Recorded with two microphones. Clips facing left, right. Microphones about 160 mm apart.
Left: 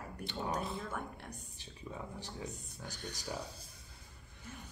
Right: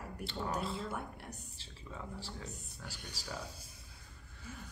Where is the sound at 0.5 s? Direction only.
15° left (ahead or behind).